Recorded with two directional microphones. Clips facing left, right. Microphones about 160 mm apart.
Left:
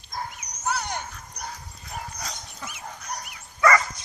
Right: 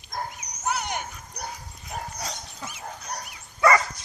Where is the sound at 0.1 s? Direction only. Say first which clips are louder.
Right 1 dB; 50° right (ahead or behind).